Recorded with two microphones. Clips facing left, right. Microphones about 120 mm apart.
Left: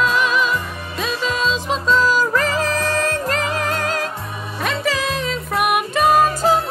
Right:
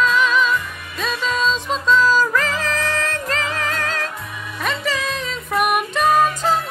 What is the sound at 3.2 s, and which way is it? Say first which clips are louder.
Music: left 3 dB; 15° left (ahead or behind).